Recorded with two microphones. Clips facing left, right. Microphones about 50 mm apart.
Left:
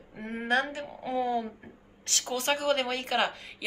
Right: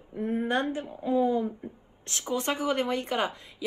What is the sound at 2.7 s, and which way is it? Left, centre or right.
Speech, left.